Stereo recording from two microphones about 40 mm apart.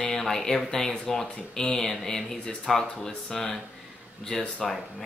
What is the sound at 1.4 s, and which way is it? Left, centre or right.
Speech, left.